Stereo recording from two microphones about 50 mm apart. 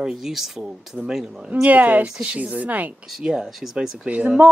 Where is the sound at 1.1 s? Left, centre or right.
Centre.